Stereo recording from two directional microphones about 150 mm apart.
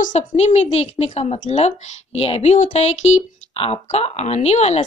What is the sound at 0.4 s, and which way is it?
Speech, 45° left (ahead or behind).